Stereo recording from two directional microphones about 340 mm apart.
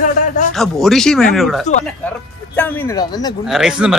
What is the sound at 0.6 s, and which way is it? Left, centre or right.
Speech, centre.